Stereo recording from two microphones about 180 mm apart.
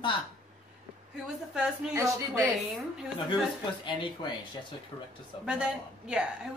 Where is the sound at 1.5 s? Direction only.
5° right (ahead or behind).